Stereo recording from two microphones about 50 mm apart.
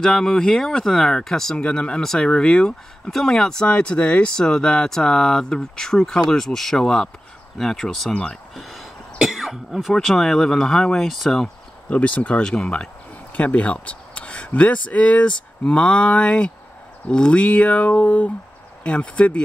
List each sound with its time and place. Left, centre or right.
0.0 s speech: centre
3.6 s speech: left
4.4 s speech: centre
8.1 s speech: centre
8.5 s a sound: centre
9.2 s cough: centre
10.0 s speech: centre
11.9 s speech: left
12.6 s speech: centre
13.3 s speech: left